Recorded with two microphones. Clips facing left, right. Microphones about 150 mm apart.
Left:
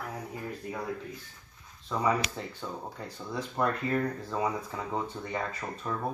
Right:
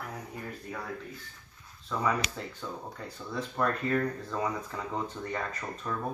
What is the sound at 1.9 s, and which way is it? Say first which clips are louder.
Speech: left 2 dB; 10° left (ahead or behind).